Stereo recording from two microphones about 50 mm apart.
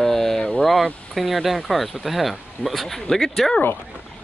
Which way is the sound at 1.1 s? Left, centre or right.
Centre.